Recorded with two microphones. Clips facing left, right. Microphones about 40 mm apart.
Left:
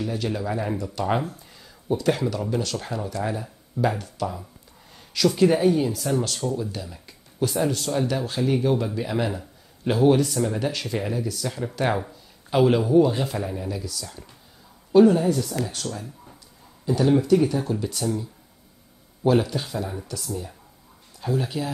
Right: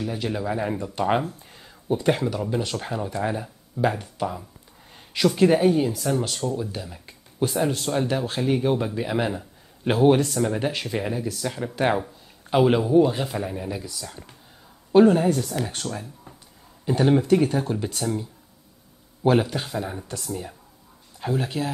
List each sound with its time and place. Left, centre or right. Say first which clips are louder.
0.0 s speech: even; centre
0.7 s speech: right 2 dB; right
1.5 s a sound: even; right
2.5 s speech: even; centre
9.8 s speech: right 1 dB; right
10.2 s speech: right 1 dB; centre
19.2 s speech: even; right
20.1 s speech: even; right
21.2 s speech: even; right